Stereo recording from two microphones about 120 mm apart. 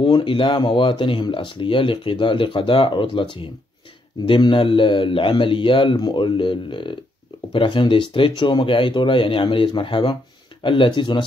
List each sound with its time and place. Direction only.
0.0 s speech: 45° left (ahead or behind)
4.3 s speech: 45° left (ahead or behind)